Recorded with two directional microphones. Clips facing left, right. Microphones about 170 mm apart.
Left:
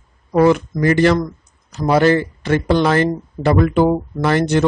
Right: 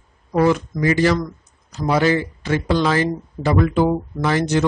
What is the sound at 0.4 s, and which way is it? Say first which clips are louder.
Speech: left 4 dB; 55° left (ahead or behind).